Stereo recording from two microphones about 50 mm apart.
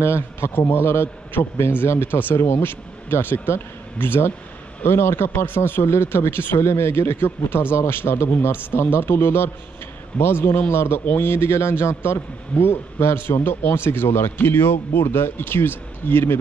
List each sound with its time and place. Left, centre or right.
0.0 s speech: left
0.6 s a man's voice: left
6.6 s a man's voice: left
7.7 s a man's voice: left
8.0 s a man's voice: left
13.4 s speech: left